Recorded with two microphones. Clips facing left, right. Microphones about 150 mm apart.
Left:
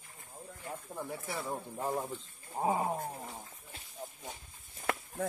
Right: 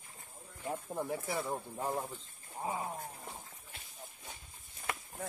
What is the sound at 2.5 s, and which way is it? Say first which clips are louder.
Wild animals: left 7 dB; 40° left (ahead or behind).